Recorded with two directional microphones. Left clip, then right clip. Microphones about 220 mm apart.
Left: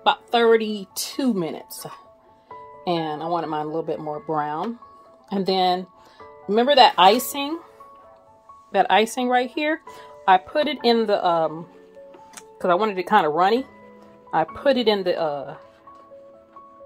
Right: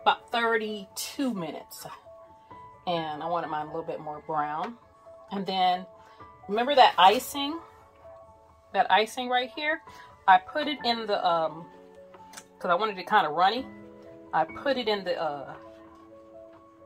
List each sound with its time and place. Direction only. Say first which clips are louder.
0.0 s speech: left 6 dB; 40° left (ahead or behind)
8.7 s speech: left 5 dB; 45° left (ahead or behind)
12.4 s music: left 7 dB; 40° left (ahead or behind)
12.8 s speech: left 6 dB; 40° left (ahead or behind)